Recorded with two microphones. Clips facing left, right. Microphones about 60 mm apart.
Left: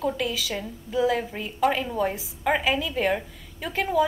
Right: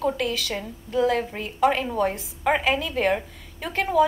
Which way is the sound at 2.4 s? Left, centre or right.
Centre.